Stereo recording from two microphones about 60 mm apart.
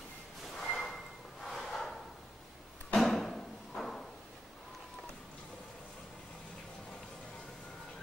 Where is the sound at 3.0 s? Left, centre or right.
Centre.